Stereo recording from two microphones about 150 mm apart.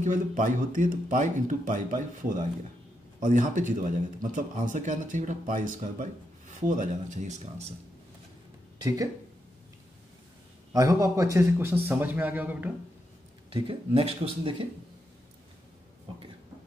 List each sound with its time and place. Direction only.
0.0 s speech: 60° right (ahead or behind)
8.8 s speech: 25° right (ahead or behind)
10.7 s a man's voice: 20° right (ahead or behind)
13.5 s speech: 35° right (ahead or behind)